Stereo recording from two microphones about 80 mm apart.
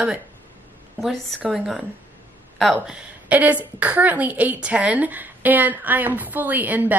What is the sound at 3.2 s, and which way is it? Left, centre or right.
A woman's voice, centre.